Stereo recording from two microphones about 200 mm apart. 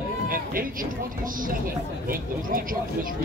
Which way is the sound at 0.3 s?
45° right (ahead or behind).